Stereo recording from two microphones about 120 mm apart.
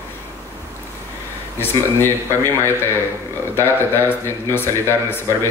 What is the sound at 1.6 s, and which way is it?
Speech, 20° left (ahead or behind).